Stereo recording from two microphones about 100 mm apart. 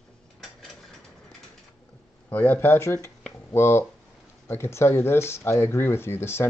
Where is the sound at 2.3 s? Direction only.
20° left (ahead or behind).